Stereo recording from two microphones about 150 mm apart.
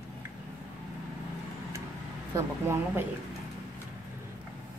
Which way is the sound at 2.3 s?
20° right (ahead or behind).